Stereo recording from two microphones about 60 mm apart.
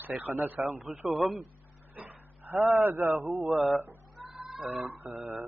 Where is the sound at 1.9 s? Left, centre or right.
Right.